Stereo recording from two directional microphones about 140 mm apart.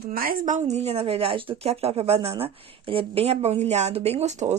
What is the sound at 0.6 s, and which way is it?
Speech, 50° right (ahead or behind).